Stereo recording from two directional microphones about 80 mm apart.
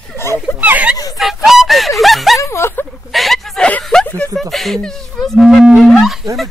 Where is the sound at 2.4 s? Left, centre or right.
Left.